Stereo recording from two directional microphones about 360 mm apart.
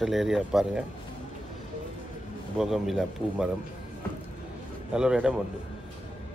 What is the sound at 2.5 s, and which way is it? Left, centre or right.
Speech, centre.